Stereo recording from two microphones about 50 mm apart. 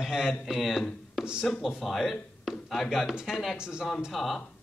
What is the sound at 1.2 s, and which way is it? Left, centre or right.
Speech, centre.